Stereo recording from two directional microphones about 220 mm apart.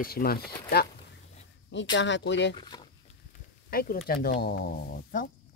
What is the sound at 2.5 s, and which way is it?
Speech, 20° left (ahead or behind).